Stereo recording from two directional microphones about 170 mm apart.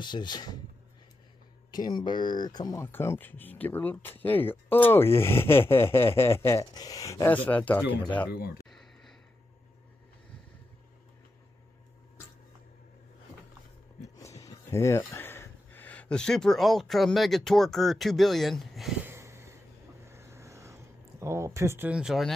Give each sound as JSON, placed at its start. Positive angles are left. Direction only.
{"t": 0.0, "sound": "speech", "side_deg": 25}
{"t": 1.7, "sound": "speech", "side_deg": 25}
{"t": 8.3, "sound": "speech", "side_deg": 70}
{"t": 14.1, "sound": "speech", "side_deg": 20}
{"t": 19.0, "sound": "a sound", "side_deg": -15}